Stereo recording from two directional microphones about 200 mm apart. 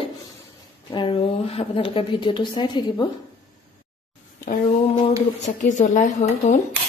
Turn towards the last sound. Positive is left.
turn(degrees=40)  # may be behind; listen again after turning